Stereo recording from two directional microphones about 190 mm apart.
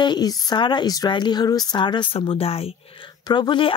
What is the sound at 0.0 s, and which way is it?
Speech, 20° left (ahead or behind).